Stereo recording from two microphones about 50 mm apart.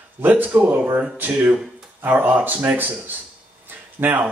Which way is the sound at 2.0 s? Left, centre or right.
Right.